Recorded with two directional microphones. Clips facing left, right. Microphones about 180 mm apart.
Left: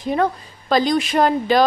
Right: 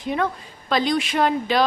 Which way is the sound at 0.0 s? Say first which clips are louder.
Left 4 dB; 40° left (ahead or behind).